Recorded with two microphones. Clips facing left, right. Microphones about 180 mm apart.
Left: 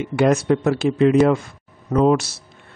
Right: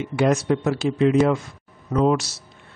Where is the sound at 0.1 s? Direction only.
55° left (ahead or behind).